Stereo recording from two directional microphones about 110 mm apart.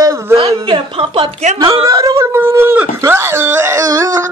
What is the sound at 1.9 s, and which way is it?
Speech, 30° right (ahead or behind).